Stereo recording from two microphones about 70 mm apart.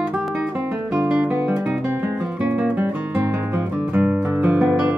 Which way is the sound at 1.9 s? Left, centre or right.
Right.